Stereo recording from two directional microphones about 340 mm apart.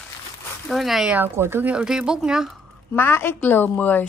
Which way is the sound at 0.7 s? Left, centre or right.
Centre.